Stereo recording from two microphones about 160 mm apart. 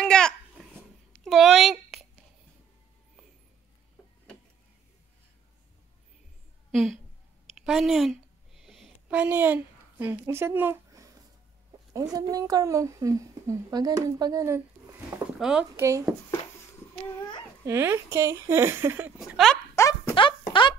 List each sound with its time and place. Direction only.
0.0 s babbling: 5° left (ahead or behind)
1.2 s a sound: centre (ahead or behind)
6.7 s speech: centre (ahead or behind)
7.5 s a sound: 5° right (ahead or behind); by 11.1 s 20° right (ahead or behind)
11.9 s a woman's voice: 20° right (ahead or behind)
15.3 s speech: 5° right (ahead or behind)
15.7 s speech: 20° right (ahead or behind)
17.6 s speech: 15° right (ahead or behind)
19.1 s speech: centre (ahead or behind)
19.7 s a sound: 15° left (ahead or behind)